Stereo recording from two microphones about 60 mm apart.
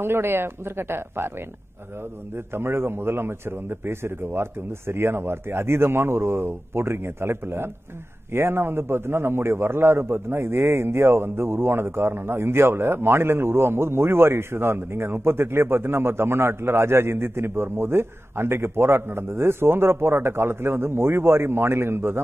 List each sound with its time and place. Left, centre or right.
0.0 s speech: right
2.3 s a man's voice: right